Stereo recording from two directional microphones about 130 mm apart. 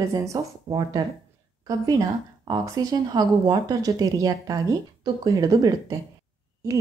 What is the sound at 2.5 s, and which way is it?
Speech, 30° right (ahead or behind).